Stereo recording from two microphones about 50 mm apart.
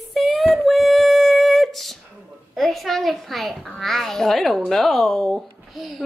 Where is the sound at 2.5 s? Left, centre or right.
Centre.